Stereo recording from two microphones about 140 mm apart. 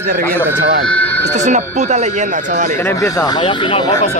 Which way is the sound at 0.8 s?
10° left (ahead or behind).